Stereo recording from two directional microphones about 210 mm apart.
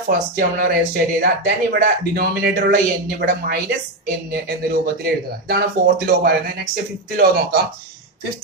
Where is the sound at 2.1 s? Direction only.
45° right (ahead or behind).